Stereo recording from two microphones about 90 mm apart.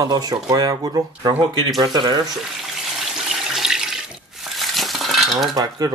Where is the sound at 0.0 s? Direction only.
45° right (ahead or behind).